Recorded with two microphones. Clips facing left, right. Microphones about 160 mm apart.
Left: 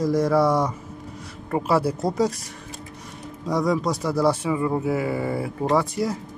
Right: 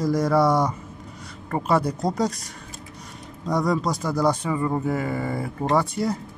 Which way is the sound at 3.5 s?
Centre (ahead or behind).